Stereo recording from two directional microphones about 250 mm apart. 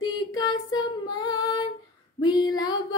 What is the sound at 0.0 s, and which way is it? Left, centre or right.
Female singing, centre.